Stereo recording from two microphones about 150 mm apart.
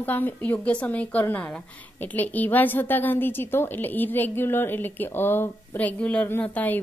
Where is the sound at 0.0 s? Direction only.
10° left (ahead or behind).